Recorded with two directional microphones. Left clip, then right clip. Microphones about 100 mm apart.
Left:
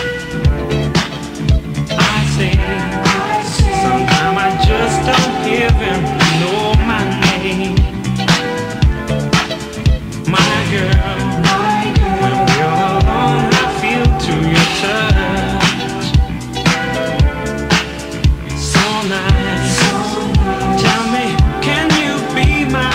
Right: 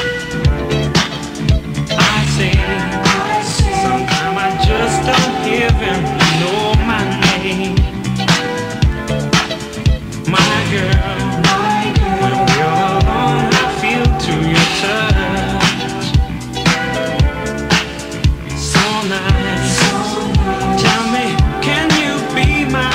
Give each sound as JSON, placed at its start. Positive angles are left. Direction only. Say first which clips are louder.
{"t": 0.0, "sound": "music", "louder": "right 1 dB", "side_deg": 45}